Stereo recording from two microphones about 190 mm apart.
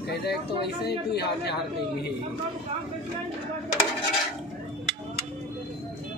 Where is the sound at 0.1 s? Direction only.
60° left (ahead or behind).